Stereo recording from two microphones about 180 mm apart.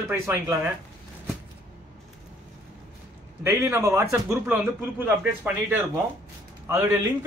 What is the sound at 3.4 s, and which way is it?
A man's voice, 15° right (ahead or behind).